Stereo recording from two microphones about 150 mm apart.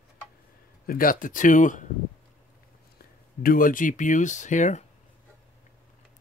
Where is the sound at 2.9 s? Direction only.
70° left (ahead or behind); by 4.8 s 55° left (ahead or behind).